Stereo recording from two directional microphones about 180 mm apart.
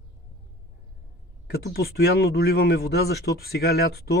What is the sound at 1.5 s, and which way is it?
Speech, 60° left (ahead or behind).